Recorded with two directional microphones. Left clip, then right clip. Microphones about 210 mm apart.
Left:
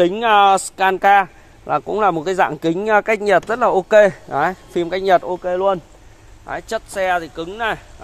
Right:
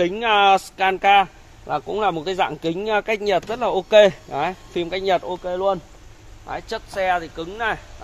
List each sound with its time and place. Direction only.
0.0 s a man's voice: 35° left (ahead or behind)
6.4 s speech: 50° left (ahead or behind)